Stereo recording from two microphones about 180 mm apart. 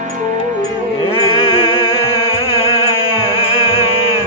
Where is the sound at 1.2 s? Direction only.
30° left (ahead or behind).